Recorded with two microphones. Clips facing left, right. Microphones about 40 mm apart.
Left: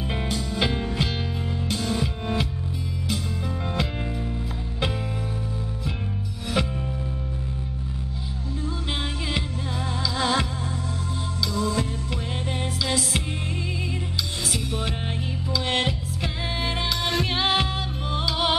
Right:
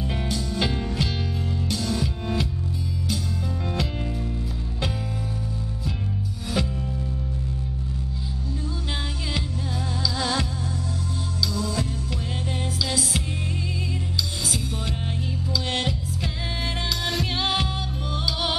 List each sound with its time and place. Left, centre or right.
0.0 s music: left
6.6 s music: left
10.1 s music: left
11.4 s music: left
15.5 s music: left